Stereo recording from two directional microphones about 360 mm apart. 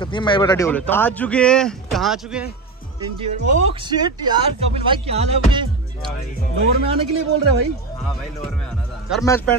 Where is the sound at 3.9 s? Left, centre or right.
Centre.